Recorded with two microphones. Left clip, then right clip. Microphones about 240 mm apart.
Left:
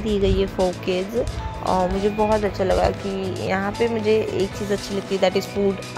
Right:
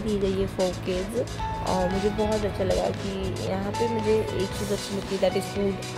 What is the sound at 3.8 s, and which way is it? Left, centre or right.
Speech, centre.